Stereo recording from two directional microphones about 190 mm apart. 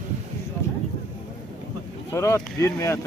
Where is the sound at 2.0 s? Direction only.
15° left (ahead or behind).